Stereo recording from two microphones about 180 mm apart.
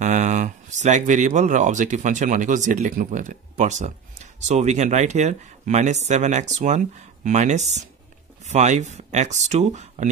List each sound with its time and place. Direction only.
0.0 s speech: 40° right (ahead or behind)